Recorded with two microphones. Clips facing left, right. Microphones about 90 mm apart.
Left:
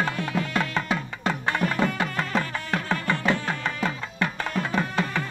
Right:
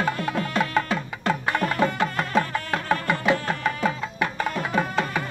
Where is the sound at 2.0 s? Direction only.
10° right (ahead or behind).